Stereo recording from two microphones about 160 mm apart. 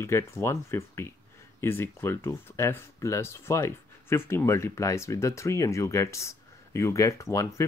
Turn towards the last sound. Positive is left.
turn(degrees=20)  # may be behind; listen again after turning